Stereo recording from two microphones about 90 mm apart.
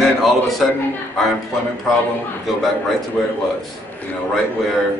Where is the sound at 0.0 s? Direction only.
Centre (ahead or behind).